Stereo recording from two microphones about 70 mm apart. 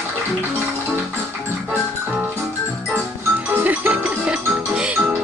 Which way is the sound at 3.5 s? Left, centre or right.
Right.